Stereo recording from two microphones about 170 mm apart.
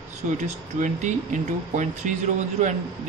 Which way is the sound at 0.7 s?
45° right (ahead or behind).